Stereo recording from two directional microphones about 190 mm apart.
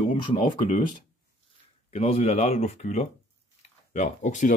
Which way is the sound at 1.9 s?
35° left (ahead or behind).